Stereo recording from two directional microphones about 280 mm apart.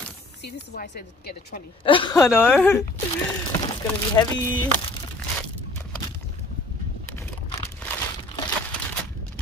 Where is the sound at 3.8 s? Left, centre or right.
Centre.